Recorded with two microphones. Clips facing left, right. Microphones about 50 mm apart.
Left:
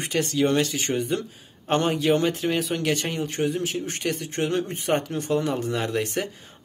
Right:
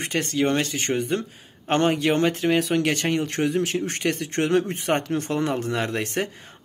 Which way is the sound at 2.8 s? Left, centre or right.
Right.